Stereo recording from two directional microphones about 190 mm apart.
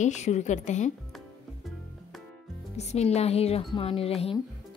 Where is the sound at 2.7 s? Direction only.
35° left (ahead or behind).